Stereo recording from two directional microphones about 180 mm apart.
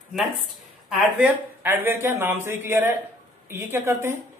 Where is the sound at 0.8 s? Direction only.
5° right (ahead or behind).